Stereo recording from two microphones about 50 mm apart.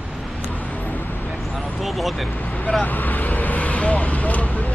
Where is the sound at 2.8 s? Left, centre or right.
Left.